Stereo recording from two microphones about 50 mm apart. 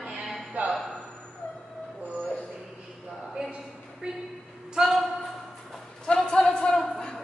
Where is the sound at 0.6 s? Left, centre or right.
Right.